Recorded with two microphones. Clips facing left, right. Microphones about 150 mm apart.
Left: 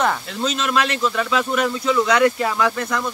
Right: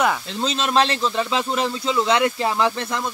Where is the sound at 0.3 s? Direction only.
30° right (ahead or behind).